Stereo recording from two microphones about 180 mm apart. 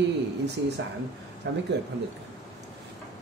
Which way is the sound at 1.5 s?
85° right.